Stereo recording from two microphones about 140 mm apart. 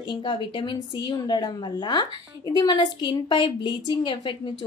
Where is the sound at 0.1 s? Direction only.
35° left (ahead or behind).